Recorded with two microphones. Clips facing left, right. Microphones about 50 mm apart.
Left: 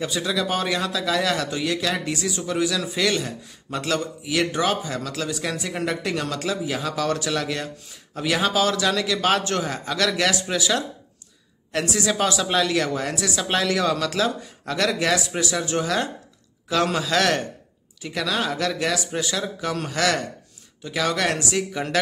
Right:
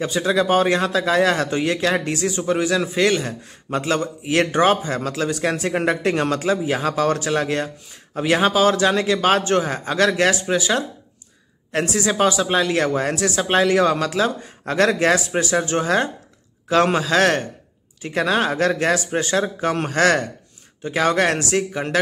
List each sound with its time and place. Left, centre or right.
0.0 s speech: right
12.7 s speech: right
13.4 s speech: right